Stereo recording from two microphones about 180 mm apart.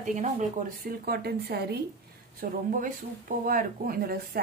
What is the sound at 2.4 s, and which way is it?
Speech, 50° right (ahead or behind).